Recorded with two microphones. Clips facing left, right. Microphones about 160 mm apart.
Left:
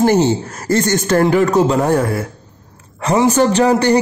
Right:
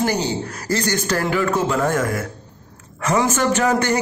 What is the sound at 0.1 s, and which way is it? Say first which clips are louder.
A man's voice: left 8 dB; 45° left (ahead or behind).